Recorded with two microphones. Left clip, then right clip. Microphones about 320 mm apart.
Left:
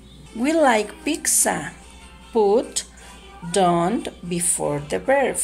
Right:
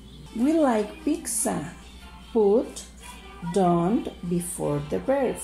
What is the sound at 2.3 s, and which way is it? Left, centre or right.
Speech, left.